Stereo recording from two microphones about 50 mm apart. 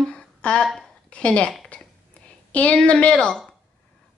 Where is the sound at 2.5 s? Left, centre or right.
Left.